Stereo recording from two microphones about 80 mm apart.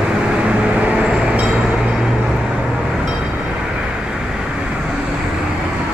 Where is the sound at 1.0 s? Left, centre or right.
Centre.